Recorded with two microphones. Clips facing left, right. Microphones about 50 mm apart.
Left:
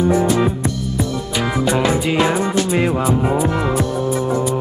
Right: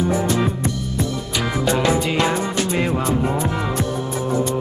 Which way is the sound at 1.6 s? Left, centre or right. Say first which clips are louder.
Left 1 dB; centre.